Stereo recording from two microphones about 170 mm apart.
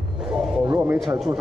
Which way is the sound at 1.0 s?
Centre (ahead or behind).